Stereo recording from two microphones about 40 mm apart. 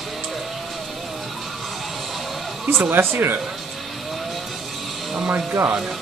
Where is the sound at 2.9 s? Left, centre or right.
Right.